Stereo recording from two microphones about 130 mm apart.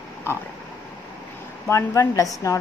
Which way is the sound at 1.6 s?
20° left (ahead or behind).